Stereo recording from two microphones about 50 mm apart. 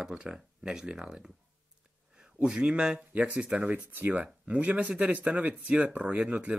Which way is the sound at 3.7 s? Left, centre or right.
Right.